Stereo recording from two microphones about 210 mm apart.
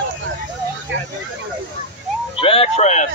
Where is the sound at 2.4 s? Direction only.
25° left (ahead or behind).